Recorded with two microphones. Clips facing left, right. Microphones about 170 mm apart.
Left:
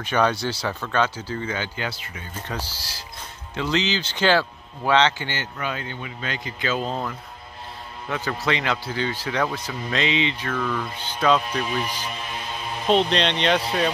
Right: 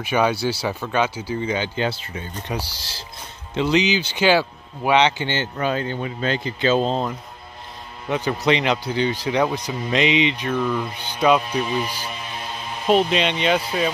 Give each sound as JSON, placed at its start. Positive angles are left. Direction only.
{"t": 0.0, "sound": "speech", "side_deg": -10}
{"t": 2.4, "sound": "speech", "side_deg": -10}
{"t": 2.8, "sound": "speech", "side_deg": -25}